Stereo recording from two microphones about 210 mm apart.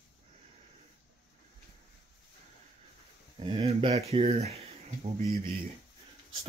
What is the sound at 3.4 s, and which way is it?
Speech, 25° right (ahead or behind).